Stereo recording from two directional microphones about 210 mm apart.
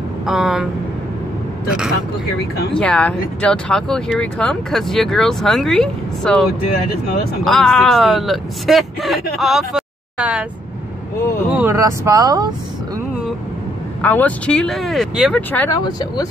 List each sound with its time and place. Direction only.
0.3 s speech: centre (ahead or behind)
2.7 s speech: 5° left (ahead or behind)
11.5 s speech: 15° right (ahead or behind)
14.0 s speech: 5° left (ahead or behind)
15.7 s speech: 20° left (ahead or behind)